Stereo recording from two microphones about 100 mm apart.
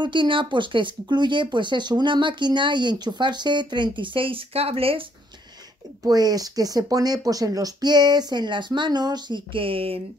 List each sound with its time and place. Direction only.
0.0 s speech: 55° right (ahead or behind); by 5.0 s 70° right (ahead or behind)
6.0 s speech: 40° right (ahead or behind); by 10.0 s 70° right (ahead or behind)